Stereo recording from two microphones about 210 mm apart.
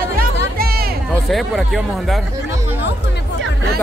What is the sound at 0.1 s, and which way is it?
Music, 45° right (ahead or behind).